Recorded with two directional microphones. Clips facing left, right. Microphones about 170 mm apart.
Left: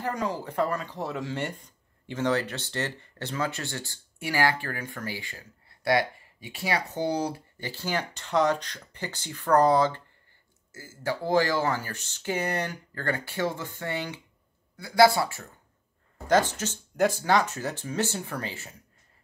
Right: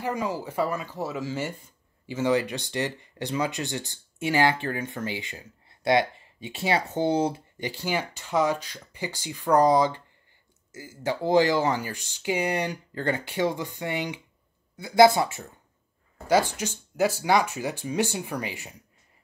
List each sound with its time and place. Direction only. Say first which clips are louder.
0.0 s speech: right 1 dB; 5° right (ahead or behind)